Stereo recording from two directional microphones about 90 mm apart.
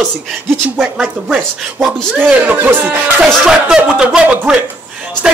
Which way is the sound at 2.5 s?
25° right (ahead or behind).